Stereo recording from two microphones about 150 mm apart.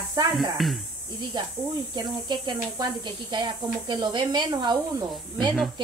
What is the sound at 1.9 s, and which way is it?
Speech, 30° right (ahead or behind).